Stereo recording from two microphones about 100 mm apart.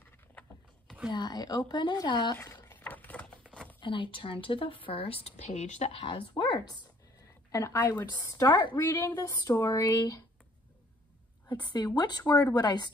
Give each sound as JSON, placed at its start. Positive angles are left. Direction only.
{"t": 1.1, "sound": "a woman's voice", "side_deg": 45}
{"t": 2.4, "sound": "a sound", "side_deg": 35}
{"t": 2.7, "sound": "typewriter", "side_deg": 15}
{"t": 3.8, "sound": "speech", "side_deg": 55}
{"t": 7.5, "sound": "a woman's voice", "side_deg": 30}
{"t": 7.9, "sound": "a woman's voice", "side_deg": 45}
{"t": 8.7, "sound": "a woman's voice", "side_deg": 25}
{"t": 9.7, "sound": "a woman's voice", "side_deg": 40}
{"t": 11.4, "sound": "a woman's voice", "side_deg": 45}